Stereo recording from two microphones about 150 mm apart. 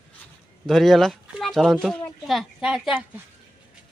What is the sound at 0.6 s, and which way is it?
Speech, centre (ahead or behind).